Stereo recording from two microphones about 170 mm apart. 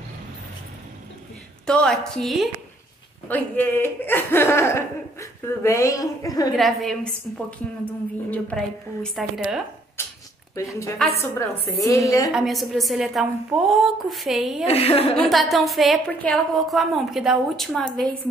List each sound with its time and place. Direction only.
1.7 s a woman's voice: 5° left (ahead or behind); by 6.5 s 20° left (ahead or behind)
6.5 s a woman's voice: centre (ahead or behind)
10.0 s a woman's voice: 15° left (ahead or behind)
12.3 s a woman's voice: centre (ahead or behind)
14.7 s a woman's voice: 35° left (ahead or behind)
15.1 s a woman's voice: centre (ahead or behind)